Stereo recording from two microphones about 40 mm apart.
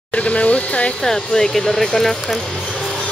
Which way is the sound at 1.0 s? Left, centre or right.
Centre.